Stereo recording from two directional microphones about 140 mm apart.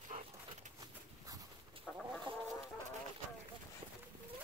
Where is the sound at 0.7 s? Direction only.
25° right (ahead or behind).